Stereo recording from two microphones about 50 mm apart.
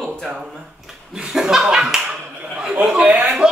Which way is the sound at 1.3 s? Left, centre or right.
Centre.